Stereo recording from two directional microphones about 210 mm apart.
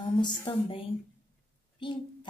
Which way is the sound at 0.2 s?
25° left (ahead or behind).